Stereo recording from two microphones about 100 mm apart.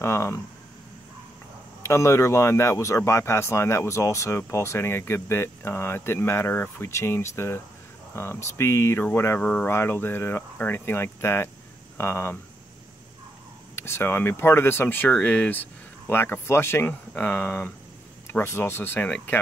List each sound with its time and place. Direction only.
0.0 s speech: 30° left (ahead or behind)
1.8 s speech: 30° left (ahead or behind)
13.7 s speech: 25° left (ahead or behind)